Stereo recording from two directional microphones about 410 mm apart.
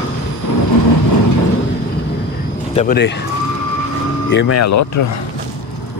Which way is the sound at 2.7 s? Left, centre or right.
Left.